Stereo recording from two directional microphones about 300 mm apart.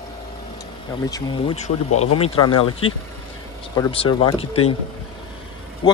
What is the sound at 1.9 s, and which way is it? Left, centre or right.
Speech, left.